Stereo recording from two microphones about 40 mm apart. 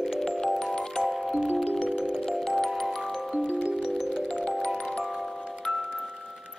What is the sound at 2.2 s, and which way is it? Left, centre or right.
Music, centre.